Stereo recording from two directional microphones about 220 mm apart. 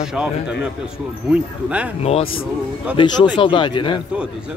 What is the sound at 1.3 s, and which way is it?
Speech, 5° right (ahead or behind).